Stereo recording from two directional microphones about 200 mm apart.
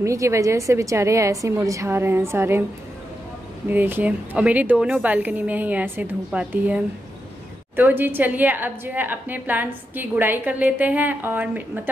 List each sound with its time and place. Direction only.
0.0 s a woman's voice: 15° right (ahead or behind)
3.6 s a woman's voice: 10° right (ahead or behind)